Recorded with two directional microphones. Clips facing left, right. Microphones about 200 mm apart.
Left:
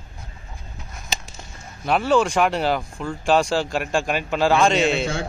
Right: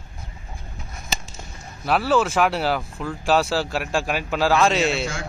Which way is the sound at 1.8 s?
5° right (ahead or behind).